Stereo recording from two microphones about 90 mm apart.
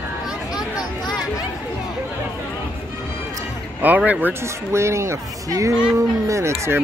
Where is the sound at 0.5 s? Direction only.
45° left (ahead or behind).